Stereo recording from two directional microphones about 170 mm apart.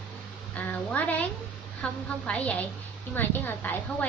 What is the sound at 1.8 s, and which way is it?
A woman's voice, 5° left (ahead or behind).